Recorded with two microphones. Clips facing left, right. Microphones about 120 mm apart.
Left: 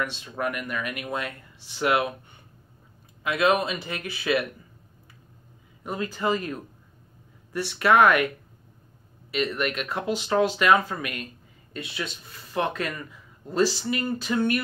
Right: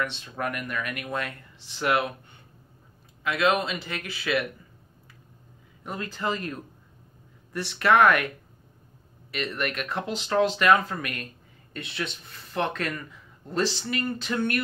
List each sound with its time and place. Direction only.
0.0 s speech: 10° left (ahead or behind)
3.3 s speech: 15° left (ahead or behind)
5.9 s speech: 15° left (ahead or behind)
7.5 s speech: 10° left (ahead or behind)
9.3 s speech: 15° left (ahead or behind)